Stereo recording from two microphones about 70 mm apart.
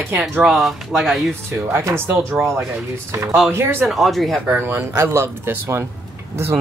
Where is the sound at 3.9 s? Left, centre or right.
Centre.